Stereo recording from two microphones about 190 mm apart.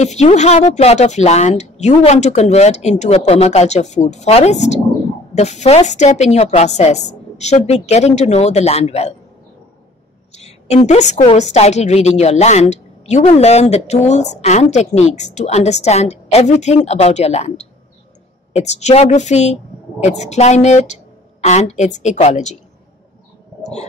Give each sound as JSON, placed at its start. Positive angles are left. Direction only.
{"t": 0.0, "sound": "a woman's voice", "side_deg": 35}
{"t": 10.3, "sound": "a woman's voice", "side_deg": 35}
{"t": 23.6, "sound": "stomach rumble", "side_deg": 35}